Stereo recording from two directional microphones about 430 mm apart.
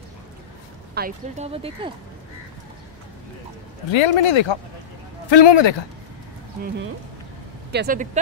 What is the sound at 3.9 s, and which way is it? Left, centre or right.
Speech, left.